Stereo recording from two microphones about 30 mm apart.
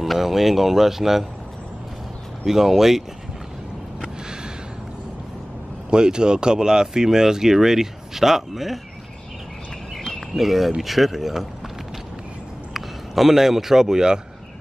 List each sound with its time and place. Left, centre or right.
0.0 s speech: centre
2.4 s speech: centre
5.9 s speech: right; by 8.7 s centre
10.3 s speech: centre
12.7 s speech: centre; by 14.2 s right